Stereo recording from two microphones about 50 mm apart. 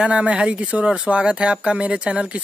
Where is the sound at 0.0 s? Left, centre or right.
Right.